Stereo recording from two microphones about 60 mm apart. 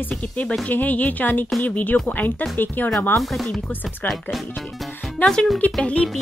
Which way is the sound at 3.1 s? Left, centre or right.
Centre.